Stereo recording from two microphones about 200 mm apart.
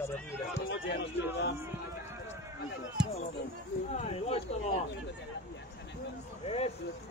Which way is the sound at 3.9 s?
30° left (ahead or behind).